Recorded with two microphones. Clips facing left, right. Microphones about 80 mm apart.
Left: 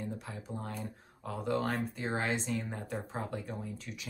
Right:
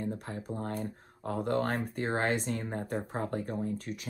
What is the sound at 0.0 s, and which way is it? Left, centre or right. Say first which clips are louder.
Speech: right 4 dB; right.